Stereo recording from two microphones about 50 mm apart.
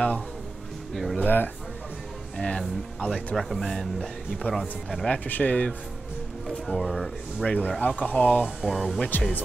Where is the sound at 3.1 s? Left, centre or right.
Centre.